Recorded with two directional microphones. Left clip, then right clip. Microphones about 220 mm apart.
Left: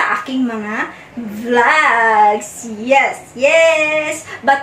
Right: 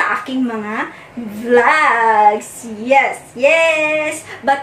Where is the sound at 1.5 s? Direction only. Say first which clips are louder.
Even; centre (ahead or behind).